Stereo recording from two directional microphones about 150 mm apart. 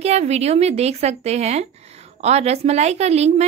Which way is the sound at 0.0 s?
45° right (ahead or behind).